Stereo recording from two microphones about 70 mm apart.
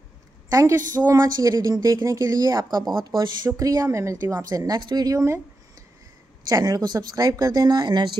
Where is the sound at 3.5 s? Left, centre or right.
Right.